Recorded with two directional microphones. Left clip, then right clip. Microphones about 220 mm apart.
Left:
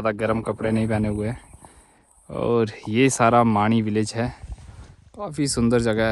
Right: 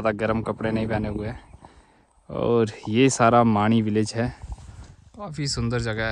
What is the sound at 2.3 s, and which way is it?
Speech, 10° right (ahead or behind).